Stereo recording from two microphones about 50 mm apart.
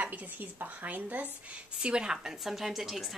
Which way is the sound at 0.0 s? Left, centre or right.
Right.